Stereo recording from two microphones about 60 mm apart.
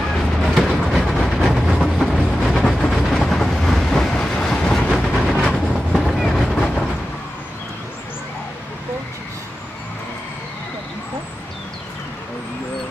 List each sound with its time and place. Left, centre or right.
0.2 s train: centre